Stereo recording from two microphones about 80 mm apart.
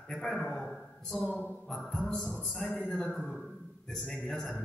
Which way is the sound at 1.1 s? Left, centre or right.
Centre.